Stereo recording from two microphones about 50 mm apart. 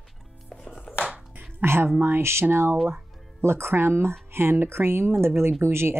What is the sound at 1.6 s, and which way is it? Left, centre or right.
Speech, right.